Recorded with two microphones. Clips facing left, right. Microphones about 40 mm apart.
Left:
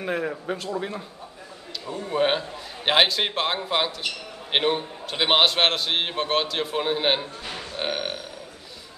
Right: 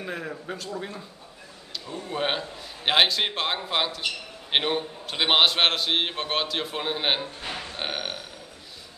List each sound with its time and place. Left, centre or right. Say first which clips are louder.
0.0 s a man's voice: left 6 dB; centre
2.2 s a man's voice: left 4 dB; centre
7.4 s burping: even; centre
7.8 s burping: left 4 dB; centre